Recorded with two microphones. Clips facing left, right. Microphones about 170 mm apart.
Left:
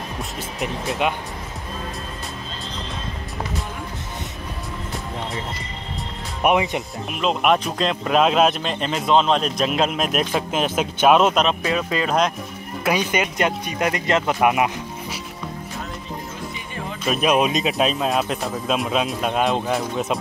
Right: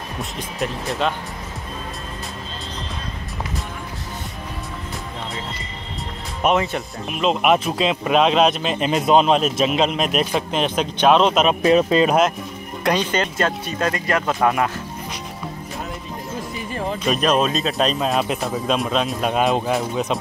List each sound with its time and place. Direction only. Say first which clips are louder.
0.6 s speech: even; 15° left (ahead or behind)
6.4 s speech: even; 15° left (ahead or behind)
7.1 s speech: right 2 dB; centre (ahead or behind)
8.9 s speech: right 2 dB; 15° right (ahead or behind); by 11.4 s 5° left (ahead or behind)
11.6 s speech: right 8 dB; 25° right (ahead or behind)
12.8 s speech: right 1 dB; 10° left (ahead or behind)
17.0 s speech: left 1 dB; 5° left (ahead or behind)
17.7 s speech: right 1 dB; 5° left (ahead or behind)